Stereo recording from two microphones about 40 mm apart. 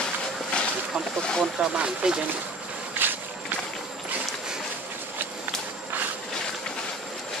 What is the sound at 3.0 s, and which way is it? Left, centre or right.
Walk, right.